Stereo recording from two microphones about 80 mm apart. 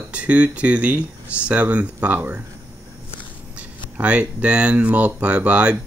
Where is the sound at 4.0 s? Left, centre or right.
Centre.